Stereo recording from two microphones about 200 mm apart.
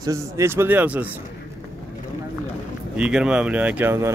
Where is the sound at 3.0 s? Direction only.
5° right (ahead or behind).